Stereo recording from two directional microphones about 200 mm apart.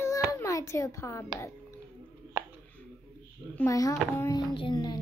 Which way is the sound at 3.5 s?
15° left (ahead or behind).